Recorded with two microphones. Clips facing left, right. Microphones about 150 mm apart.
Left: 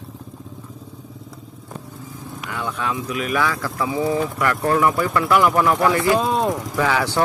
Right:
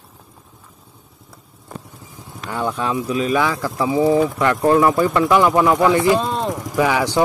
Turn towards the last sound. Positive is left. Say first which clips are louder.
# right 3 dB
turn(degrees=-15)  # may be behind; listen again after turning